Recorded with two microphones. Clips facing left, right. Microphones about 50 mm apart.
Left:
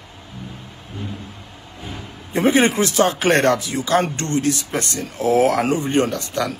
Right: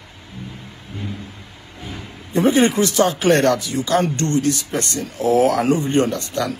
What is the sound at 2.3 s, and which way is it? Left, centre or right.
Speech, left.